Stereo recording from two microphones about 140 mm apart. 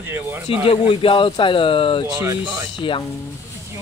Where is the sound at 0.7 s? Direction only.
40° left (ahead or behind).